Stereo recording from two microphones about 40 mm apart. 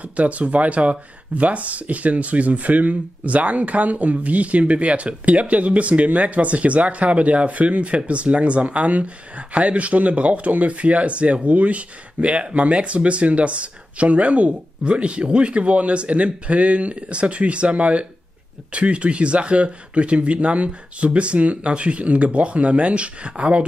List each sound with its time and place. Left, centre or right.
0.1 s speech: right